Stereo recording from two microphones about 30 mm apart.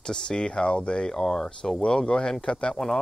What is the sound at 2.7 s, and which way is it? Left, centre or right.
Speech, centre.